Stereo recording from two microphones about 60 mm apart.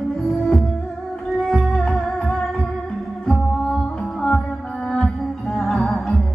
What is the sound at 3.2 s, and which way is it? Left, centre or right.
Music, centre.